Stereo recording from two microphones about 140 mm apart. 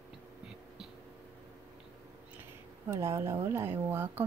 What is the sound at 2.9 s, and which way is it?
Speech, 20° right (ahead or behind).